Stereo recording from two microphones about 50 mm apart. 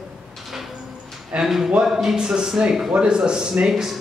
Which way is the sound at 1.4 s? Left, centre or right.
Centre.